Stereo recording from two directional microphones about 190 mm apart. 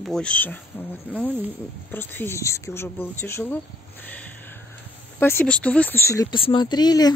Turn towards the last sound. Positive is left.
turn(degrees=20)  # may be behind; listen again after turning